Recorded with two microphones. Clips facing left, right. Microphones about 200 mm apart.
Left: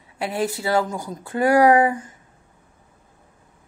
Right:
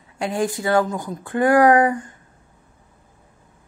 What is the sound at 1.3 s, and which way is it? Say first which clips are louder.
Speech: right 1 dB; 25° left (ahead or behind).